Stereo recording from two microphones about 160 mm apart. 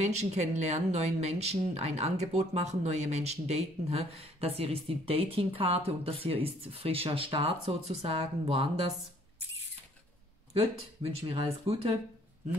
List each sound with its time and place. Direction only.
0.0 s speech: 45° right (ahead or behind)
11.0 s speech: 40° right (ahead or behind)